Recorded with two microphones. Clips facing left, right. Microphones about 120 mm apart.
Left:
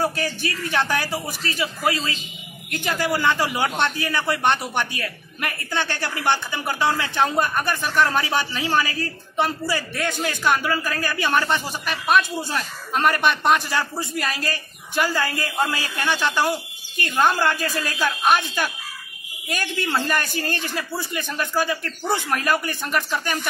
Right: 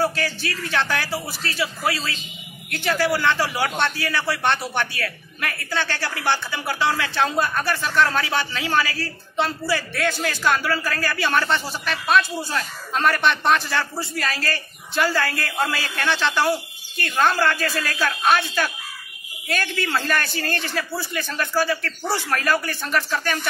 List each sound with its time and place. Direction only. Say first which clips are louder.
0.0 s a man's voice: even; 15° left (ahead or behind)
2.7 s a man's voice: right 2 dB; 15° left (ahead or behind)